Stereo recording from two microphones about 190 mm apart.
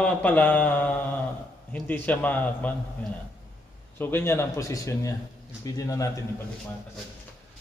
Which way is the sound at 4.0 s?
10° left (ahead or behind).